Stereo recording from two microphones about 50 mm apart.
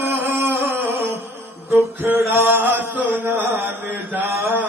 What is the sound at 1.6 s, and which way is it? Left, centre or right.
Mantra, right.